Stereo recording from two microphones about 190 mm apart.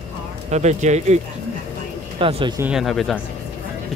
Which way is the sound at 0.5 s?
35° right (ahead or behind).